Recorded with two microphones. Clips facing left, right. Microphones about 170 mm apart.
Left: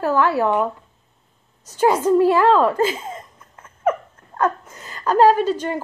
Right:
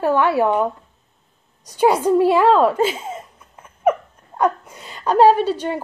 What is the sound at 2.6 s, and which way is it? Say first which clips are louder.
Laughter: right 1 dB; 10° right (ahead or behind).